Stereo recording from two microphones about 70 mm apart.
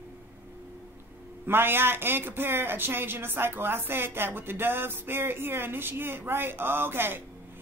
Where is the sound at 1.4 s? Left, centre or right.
Right.